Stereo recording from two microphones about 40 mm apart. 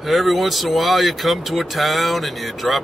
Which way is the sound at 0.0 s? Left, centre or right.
Centre.